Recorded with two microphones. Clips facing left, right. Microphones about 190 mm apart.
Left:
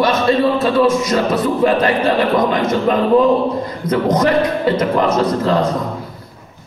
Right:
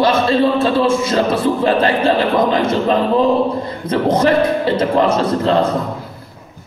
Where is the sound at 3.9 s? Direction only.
30° right (ahead or behind).